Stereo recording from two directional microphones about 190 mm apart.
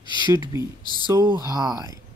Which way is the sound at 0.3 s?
15° right (ahead or behind).